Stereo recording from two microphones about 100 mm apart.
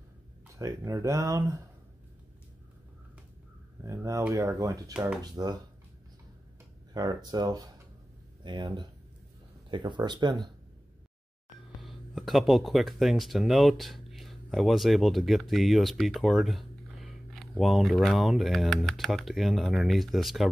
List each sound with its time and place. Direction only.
0.6 s speech: 35° right (ahead or behind)
3.8 s speech: 30° right (ahead or behind)
6.9 s speech: 40° right (ahead or behind)
11.8 s speech: centre (ahead or behind)